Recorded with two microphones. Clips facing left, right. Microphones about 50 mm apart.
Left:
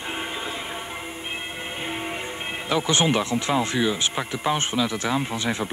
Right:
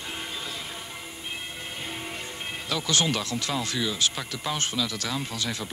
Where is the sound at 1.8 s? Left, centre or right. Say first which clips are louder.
Left 7 dB; left.